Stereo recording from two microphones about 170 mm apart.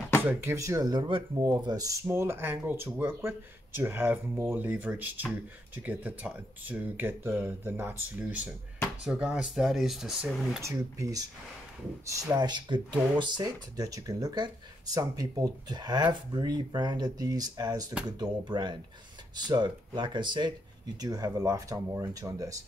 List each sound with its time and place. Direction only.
0.2 s speech: 15° right (ahead or behind)
10.6 s speech: 20° right (ahead or behind)